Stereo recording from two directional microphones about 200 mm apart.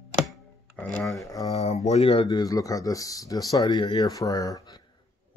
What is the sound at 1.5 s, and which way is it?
Speech, 30° left (ahead or behind).